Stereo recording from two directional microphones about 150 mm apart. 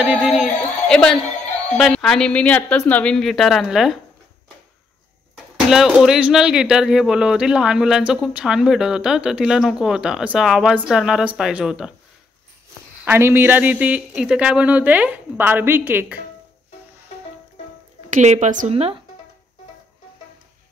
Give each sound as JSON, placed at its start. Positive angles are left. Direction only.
{"t": 0.1, "sound": "a woman's voice", "side_deg": 0}
{"t": 5.7, "sound": "speech", "side_deg": -5}
{"t": 13.0, "sound": "speech", "side_deg": -15}
{"t": 18.1, "sound": "a woman's voice", "side_deg": -50}